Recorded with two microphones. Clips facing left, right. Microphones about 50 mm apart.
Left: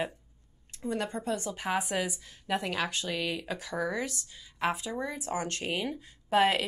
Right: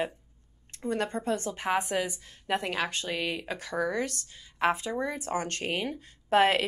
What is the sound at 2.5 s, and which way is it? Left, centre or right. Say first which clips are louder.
Speech: right 1 dB; centre.